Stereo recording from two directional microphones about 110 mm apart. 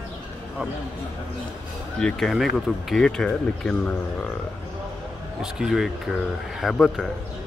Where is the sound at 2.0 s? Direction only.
5° left (ahead or behind).